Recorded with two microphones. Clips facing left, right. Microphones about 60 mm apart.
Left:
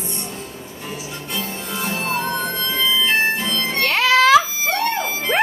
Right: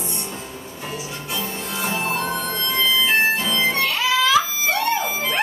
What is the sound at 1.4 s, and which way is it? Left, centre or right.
Harmonica, centre.